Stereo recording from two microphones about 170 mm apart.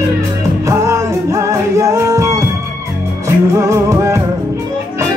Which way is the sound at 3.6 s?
20° right (ahead or behind).